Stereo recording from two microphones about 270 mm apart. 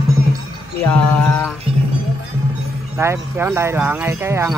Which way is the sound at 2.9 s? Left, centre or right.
Centre.